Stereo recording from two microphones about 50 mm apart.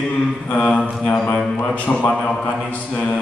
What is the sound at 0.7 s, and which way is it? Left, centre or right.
Mantra, centre.